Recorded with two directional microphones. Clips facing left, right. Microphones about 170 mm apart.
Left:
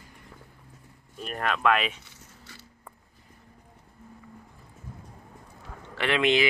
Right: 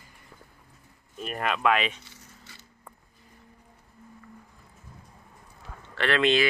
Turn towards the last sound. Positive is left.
turn(degrees=15)  # may be behind; listen again after turning